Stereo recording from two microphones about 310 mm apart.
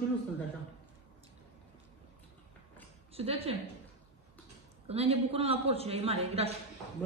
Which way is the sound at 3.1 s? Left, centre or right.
Centre.